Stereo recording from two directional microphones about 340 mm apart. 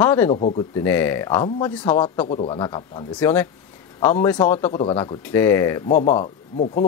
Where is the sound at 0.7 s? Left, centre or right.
Centre.